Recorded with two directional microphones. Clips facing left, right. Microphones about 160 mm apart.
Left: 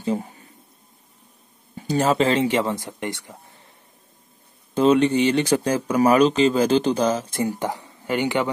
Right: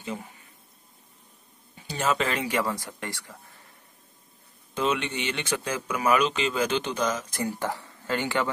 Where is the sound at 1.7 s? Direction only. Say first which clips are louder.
Left 7 dB; 40° left (ahead or behind); by 3.3 s 20° left (ahead or behind).